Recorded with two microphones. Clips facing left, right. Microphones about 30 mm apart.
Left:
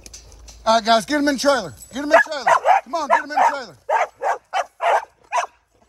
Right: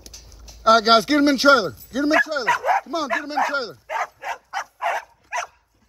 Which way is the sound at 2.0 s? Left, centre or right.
Centre.